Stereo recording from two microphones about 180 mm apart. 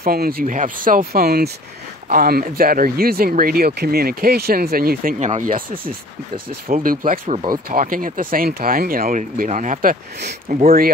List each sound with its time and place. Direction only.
0.0 s speech: 55° right (ahead or behind)